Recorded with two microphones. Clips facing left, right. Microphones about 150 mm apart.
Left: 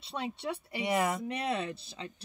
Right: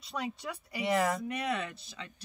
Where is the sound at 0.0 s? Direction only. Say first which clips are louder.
Left 1 dB; 30° left (ahead or behind).